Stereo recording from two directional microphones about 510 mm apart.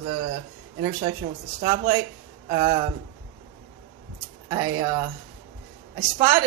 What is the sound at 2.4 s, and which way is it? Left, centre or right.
Speech, centre.